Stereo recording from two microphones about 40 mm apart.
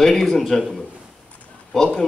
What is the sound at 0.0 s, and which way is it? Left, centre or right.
Speech, centre.